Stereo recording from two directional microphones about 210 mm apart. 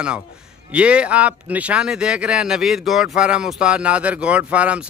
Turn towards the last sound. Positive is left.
turn(degrees=-5)  # may be behind; listen again after turning